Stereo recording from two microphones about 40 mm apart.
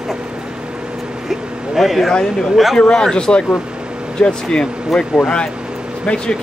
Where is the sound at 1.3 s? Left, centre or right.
Centre.